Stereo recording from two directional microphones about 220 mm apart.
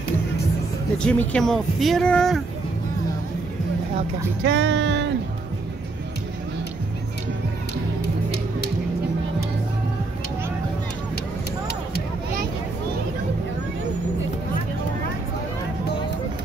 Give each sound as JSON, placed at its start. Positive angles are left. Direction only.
{"t": 0.9, "sound": "speech", "side_deg": 5}
{"t": 4.4, "sound": "speech", "side_deg": -50}